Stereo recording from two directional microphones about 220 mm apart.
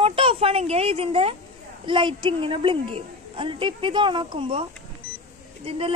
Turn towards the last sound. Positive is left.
turn(degrees=-25)  # may be behind; listen again after turning